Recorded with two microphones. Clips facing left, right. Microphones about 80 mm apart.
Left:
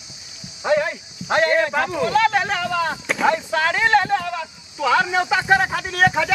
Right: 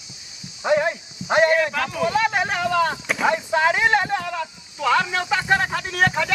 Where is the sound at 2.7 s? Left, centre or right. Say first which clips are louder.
Right 1 dB; centre.